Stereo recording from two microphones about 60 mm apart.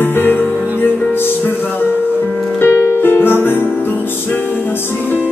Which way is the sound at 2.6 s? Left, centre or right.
Left.